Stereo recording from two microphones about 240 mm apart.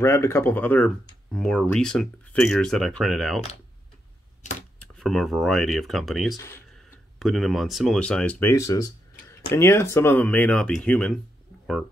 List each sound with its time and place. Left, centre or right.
0.0 s speech: centre
4.9 s speech: centre
6.3 s speech: centre